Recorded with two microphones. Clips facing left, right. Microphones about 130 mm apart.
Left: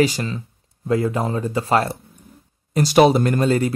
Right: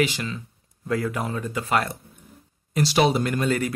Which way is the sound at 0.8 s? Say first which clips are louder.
Left 6 dB; 25° left (ahead or behind).